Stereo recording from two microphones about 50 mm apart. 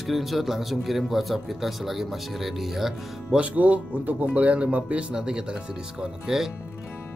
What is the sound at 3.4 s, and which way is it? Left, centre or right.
Speech, right.